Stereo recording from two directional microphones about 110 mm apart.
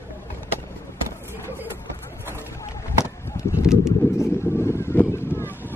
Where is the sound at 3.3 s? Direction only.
25° left (ahead or behind).